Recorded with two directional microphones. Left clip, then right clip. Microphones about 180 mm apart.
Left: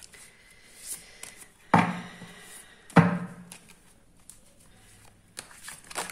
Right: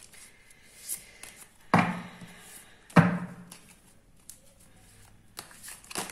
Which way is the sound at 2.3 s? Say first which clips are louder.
Left 3 dB; 20° left (ahead or behind).